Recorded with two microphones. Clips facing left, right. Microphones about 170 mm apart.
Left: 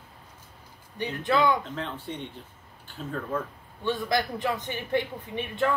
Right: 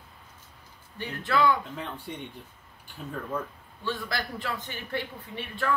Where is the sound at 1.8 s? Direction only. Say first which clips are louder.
Left 3 dB; 10° right (ahead or behind).